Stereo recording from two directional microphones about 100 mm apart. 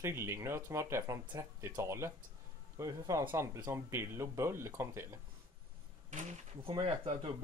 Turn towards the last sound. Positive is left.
turn(degrees=-80)